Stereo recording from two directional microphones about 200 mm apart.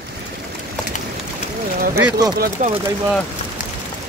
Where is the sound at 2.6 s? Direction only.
40° right (ahead or behind).